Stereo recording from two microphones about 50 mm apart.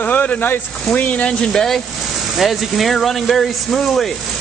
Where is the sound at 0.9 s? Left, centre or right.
Left.